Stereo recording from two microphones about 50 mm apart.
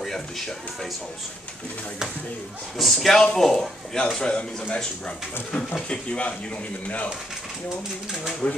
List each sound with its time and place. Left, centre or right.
2.8 s a man's voice: centre
4.2 s speech: left
8.4 s speech: left